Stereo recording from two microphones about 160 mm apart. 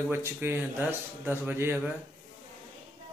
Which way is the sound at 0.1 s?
15° right (ahead or behind).